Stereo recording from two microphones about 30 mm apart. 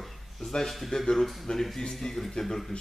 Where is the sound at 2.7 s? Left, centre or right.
Left.